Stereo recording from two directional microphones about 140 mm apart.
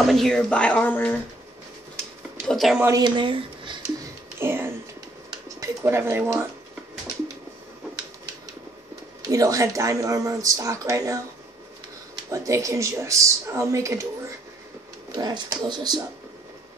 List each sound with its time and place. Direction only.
0.0 s a woman's voice: centre (ahead or behind)
2.4 s speech: centre (ahead or behind)
3.0 s speech: 35° right (ahead or behind)
4.4 s speech: 15° right (ahead or behind)
9.3 s speech: 25° right (ahead or behind)
12.3 s speech: 20° right (ahead or behind)
15.1 s speech: 25° right (ahead or behind)